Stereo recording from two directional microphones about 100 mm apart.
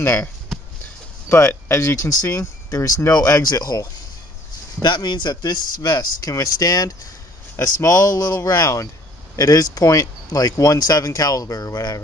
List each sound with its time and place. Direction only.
0.0 s speech: 25° left (ahead or behind)
1.3 s speech: 25° left (ahead or behind)
4.8 s speech: 50° left (ahead or behind)